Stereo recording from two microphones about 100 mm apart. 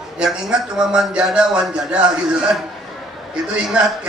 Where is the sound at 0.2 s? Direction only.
10° right (ahead or behind).